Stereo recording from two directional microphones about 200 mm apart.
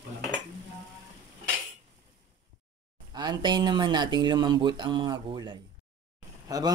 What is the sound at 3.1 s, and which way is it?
A man's voice, 20° right (ahead or behind).